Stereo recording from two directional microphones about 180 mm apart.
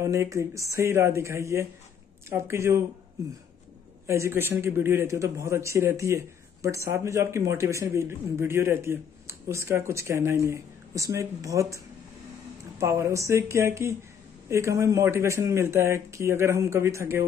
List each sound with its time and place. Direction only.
0.0 s a man's voice: 15° right (ahead or behind)
4.1 s a man's voice: 15° right (ahead or behind)